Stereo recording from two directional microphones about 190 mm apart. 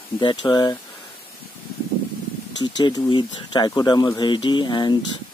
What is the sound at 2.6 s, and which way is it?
Speech, 20° left (ahead or behind).